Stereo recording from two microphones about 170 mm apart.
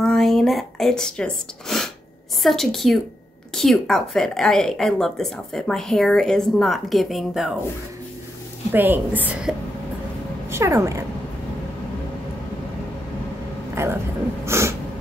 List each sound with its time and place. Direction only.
0.0 s a woman's voice: centre (ahead or behind)
8.7 s a woman's voice: 10° right (ahead or behind)
10.5 s speech: 15° right (ahead or behind)
13.8 s a woman's voice: 15° right (ahead or behind)
14.4 s a sound: 15° right (ahead or behind)